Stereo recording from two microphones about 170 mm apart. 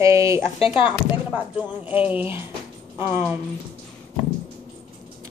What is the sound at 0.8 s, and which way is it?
Speech, 10° right (ahead or behind).